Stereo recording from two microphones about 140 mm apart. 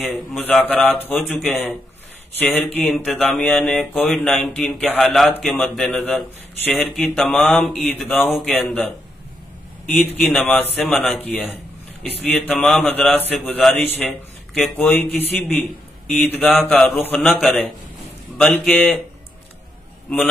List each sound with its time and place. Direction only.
0.3 s a man's voice: 10° left (ahead or behind)
9.8 s a man's voice: centre (ahead or behind)
15.0 s a man's voice: 15° left (ahead or behind)